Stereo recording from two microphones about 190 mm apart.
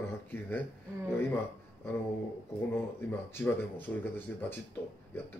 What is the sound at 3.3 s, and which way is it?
Speech, 10° left (ahead or behind).